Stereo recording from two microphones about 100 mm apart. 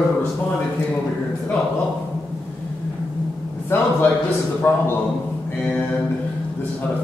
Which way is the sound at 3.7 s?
25° left (ahead or behind).